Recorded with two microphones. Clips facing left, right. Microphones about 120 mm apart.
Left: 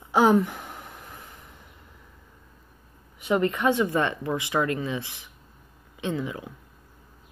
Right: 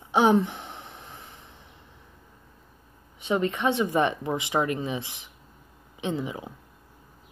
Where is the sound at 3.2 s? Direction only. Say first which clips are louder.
Left 2 dB; 20° right (ahead or behind).